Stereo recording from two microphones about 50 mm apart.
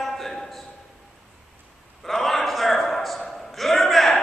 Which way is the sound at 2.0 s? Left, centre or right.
Centre.